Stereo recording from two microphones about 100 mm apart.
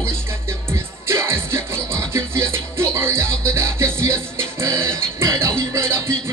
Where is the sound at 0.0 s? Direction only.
25° right (ahead or behind).